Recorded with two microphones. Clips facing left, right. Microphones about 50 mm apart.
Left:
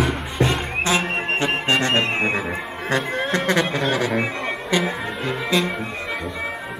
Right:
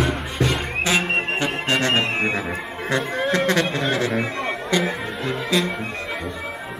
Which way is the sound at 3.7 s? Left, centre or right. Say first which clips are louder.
Left 1 dB; centre.